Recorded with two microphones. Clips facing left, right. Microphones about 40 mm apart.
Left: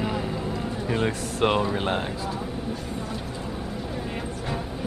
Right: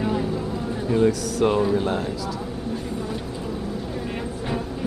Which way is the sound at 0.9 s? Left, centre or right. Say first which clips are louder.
Right 7 dB; left.